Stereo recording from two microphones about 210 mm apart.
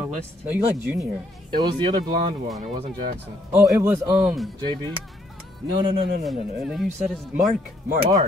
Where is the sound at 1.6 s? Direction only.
20° right (ahead or behind).